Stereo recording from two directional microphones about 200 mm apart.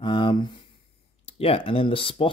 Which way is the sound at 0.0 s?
25° left (ahead or behind).